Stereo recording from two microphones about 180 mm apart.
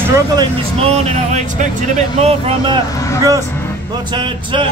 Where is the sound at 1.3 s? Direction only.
40° right (ahead or behind).